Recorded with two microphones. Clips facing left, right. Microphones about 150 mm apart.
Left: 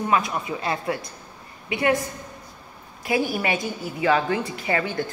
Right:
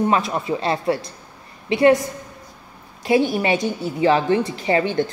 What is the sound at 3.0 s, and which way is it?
A woman's voice, 25° right (ahead or behind).